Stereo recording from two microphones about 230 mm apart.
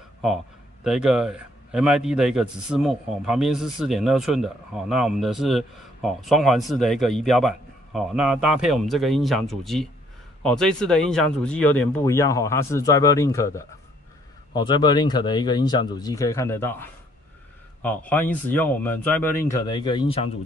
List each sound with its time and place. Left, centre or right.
0.8 s a man's voice: centre; by 20.2 s left